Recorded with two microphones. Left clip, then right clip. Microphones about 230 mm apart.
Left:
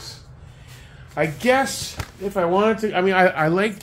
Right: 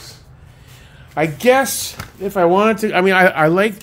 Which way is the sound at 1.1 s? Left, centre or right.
Right.